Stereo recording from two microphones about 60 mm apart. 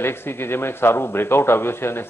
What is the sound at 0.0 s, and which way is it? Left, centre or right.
Speech, left.